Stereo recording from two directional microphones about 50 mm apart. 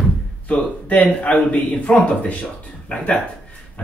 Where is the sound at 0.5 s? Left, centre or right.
Left.